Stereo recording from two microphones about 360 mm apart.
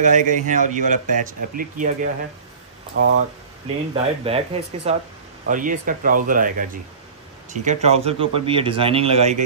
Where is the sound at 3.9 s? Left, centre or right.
Centre.